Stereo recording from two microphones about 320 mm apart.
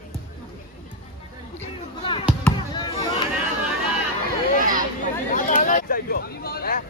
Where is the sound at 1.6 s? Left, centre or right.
Centre.